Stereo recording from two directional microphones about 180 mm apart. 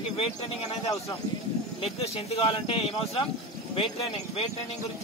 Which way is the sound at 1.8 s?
35° left (ahead or behind).